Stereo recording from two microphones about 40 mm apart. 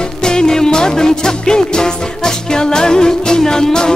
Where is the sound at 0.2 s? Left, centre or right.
Centre.